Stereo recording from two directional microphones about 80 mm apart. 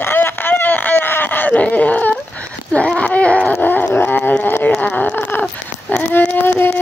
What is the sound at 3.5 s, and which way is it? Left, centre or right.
Dog, left.